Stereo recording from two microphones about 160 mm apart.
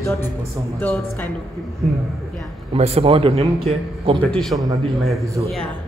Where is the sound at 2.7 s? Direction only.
40° right (ahead or behind).